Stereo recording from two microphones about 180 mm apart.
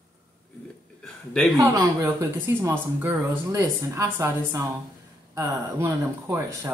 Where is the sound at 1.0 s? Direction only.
5° left (ahead or behind).